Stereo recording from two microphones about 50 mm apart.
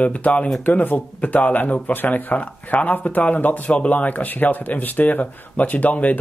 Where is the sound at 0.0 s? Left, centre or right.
Left.